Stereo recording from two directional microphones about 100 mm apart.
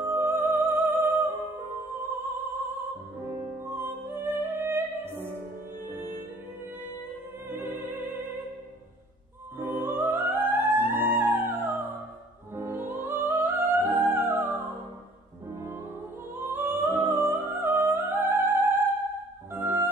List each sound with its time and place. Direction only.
0.0 s music: 20° right (ahead or behind)
3.6 s music: 20° right (ahead or behind)
7.4 s music: 20° right (ahead or behind)
9.6 s music: 20° right (ahead or behind)
16.3 s music: 20° right (ahead or behind)